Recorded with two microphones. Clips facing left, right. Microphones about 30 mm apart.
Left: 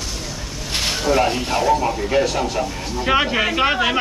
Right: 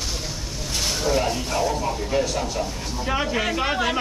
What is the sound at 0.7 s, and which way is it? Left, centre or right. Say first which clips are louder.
Speech: left 5 dB; left.